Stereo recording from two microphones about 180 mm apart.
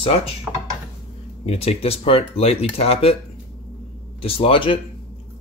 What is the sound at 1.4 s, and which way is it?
Speech, 35° left (ahead or behind).